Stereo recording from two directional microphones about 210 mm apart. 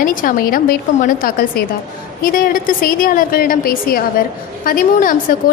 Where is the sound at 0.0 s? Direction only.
40° left (ahead or behind).